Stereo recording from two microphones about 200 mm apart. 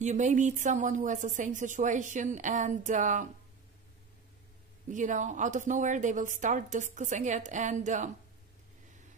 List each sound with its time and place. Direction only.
0.0 s speech: 35° right (ahead or behind)
4.8 s speech: 40° right (ahead or behind)